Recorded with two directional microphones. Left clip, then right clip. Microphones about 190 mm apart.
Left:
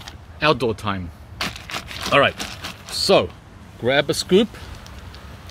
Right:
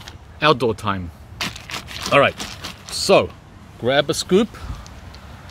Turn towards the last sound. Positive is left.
turn(degrees=-10)  # may be behind; listen again after turning